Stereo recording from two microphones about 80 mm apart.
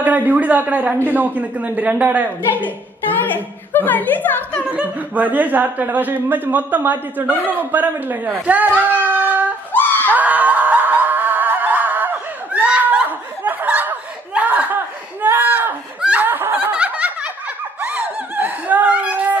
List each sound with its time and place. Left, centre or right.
0.0 s speech: right
2.6 s a woman's voice: left
4.6 s speech: centre
9.7 s screaming: left
10.1 s a sound: centre
13.4 s snicker: right
15.2 s a sound: right
16.0 s snicker: centre
16.3 s snicker: right